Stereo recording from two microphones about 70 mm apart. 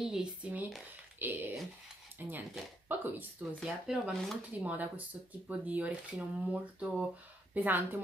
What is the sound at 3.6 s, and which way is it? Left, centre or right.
Speech, centre.